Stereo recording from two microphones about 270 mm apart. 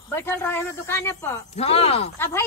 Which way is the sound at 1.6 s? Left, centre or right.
Left.